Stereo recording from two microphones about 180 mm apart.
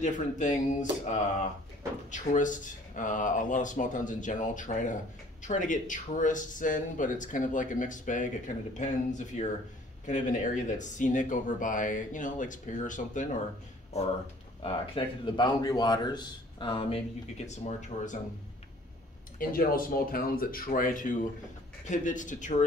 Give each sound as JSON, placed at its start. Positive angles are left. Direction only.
{"t": 0.0, "sound": "a man's voice", "side_deg": 45}
{"t": 17.5, "sound": "speech", "side_deg": 40}
{"t": 19.3, "sound": "speech", "side_deg": 55}